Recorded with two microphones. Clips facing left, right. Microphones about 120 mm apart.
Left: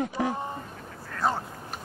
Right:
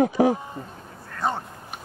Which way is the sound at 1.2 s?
Centre (ahead or behind).